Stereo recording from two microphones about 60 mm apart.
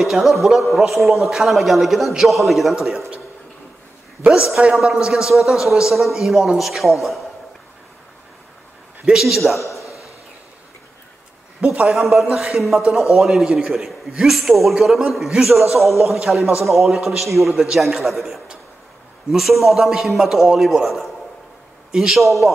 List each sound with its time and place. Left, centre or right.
0.0 s a man's voice: centre
4.7 s a man's voice: centre
9.0 s a man's voice: centre
11.6 s a man's voice: centre
12.0 s a man's voice: centre